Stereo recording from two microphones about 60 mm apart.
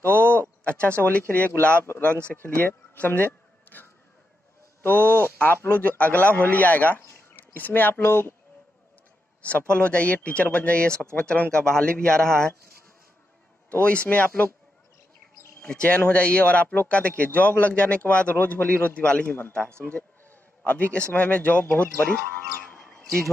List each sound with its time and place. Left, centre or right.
0.3 s a sound: left
1.0 s speech: left
3.7 s vehicle: left
4.8 s speech: left
7.1 s a sound: left
9.4 s speech: left
13.7 s speech: left
15.7 s a man's voice: centre
22.6 s a sound: left